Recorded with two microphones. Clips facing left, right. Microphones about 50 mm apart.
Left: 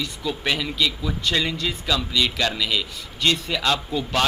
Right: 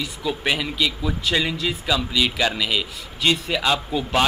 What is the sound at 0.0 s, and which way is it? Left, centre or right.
Speech, centre.